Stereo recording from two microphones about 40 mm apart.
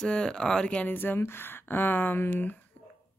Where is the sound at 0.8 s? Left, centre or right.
Left.